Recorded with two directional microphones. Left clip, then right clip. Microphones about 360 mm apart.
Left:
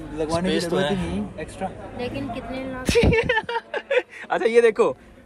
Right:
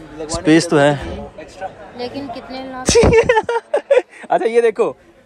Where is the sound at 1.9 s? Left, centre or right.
Right.